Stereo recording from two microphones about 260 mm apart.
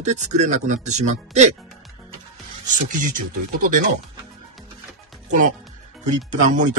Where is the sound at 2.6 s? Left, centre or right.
Right.